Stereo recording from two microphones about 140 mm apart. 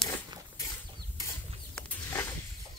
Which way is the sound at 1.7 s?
15° left (ahead or behind).